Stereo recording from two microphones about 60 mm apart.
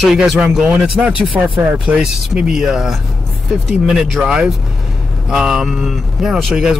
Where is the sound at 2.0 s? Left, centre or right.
Centre.